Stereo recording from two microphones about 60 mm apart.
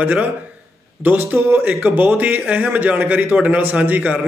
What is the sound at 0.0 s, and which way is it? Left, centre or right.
A man's voice, right.